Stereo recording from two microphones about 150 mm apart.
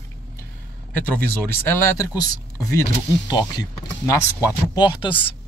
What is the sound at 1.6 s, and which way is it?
Speech, 25° left (ahead or behind).